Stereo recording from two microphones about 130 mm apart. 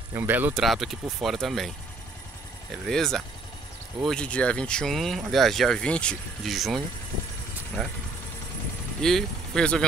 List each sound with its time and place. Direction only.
0.1 s speech: 15° right (ahead or behind)
0.6 s speech: centre (ahead or behind)
2.7 s speech: 5° left (ahead or behind)
7.8 s speech: centre (ahead or behind)
9.0 s speech: centre (ahead or behind)